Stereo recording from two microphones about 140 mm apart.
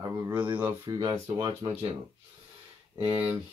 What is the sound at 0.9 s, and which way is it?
Speech, 30° right (ahead or behind).